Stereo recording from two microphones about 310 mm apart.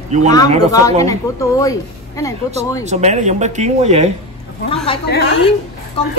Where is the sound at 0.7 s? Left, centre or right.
Centre.